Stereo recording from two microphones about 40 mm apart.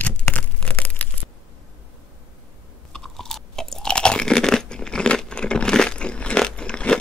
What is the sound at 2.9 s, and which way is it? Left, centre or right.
Crunch, centre.